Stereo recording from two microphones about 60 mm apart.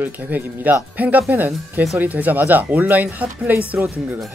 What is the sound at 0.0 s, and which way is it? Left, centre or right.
Speech, right.